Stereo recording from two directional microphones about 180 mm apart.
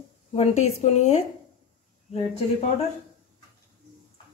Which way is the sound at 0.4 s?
35° left (ahead or behind).